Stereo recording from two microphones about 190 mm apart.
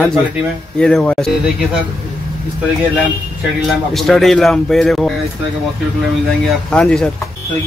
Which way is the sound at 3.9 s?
Centre (ahead or behind).